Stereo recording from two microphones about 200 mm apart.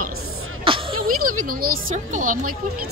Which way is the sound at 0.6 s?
25° right (ahead or behind).